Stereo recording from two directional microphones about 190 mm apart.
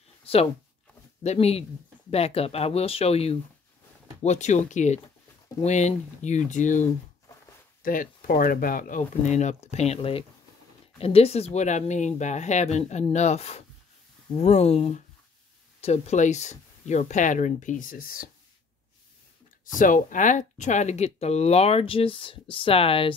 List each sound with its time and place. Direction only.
1.2 s speech: 35° left (ahead or behind); by 18.3 s 50° left (ahead or behind)
19.6 s speech: 45° left (ahead or behind)